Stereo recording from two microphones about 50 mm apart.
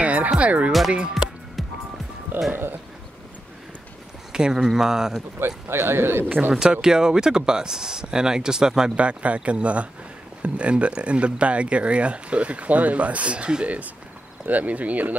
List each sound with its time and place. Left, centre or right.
0.0 s music: right
0.7 s speech: centre
1.6 s music: centre
2.3 s speech: right
4.3 s speech: centre
5.7 s a man's voice: right
6.2 s speech: right
6.6 s speech: centre; by 15.1 s right